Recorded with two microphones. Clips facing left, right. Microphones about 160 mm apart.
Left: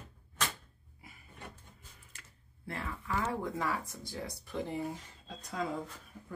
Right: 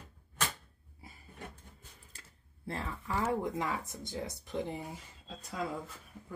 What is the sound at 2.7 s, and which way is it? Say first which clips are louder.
Speech: right 1 dB; 30° right (ahead or behind).